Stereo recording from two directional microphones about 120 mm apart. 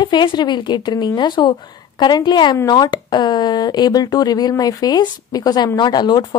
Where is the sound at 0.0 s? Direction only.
40° left (ahead or behind).